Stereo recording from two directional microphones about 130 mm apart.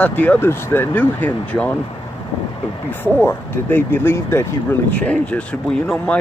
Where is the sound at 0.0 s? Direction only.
10° left (ahead or behind).